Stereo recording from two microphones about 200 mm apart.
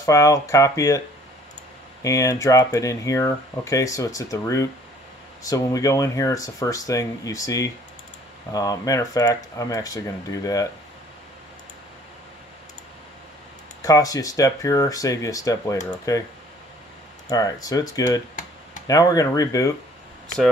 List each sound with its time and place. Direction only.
0.0 s speech: 15° left (ahead or behind)
2.0 s speech: 15° left (ahead or behind)
13.8 s speech: 15° left (ahead or behind)
17.3 s speech: 15° left (ahead or behind)